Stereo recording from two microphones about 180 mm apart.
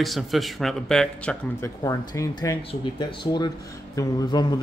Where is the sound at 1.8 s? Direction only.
20° left (ahead or behind).